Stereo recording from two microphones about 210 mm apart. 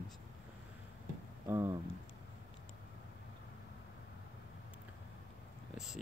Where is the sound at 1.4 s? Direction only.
15° right (ahead or behind).